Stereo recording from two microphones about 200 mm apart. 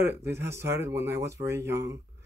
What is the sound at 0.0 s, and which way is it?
Speech, 10° right (ahead or behind).